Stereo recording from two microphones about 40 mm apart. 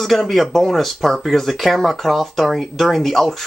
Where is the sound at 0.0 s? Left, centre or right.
Centre.